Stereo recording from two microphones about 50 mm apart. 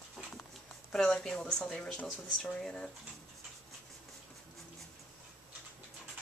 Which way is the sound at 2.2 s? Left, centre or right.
Centre.